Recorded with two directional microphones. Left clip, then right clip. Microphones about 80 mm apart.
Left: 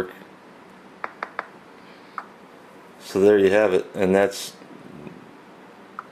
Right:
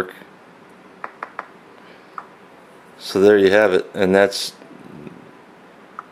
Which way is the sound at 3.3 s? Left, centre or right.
Centre.